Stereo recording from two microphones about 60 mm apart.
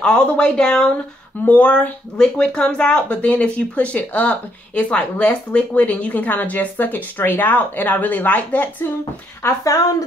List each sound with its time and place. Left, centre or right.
0.0 s speech: centre
9.4 s a woman's voice: left